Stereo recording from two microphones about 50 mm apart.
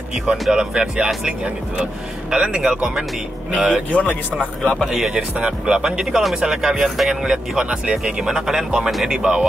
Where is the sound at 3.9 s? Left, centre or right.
Left.